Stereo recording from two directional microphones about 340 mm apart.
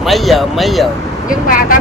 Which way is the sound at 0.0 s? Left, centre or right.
Centre.